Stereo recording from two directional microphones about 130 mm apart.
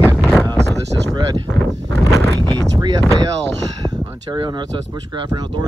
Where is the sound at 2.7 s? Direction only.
30° right (ahead or behind).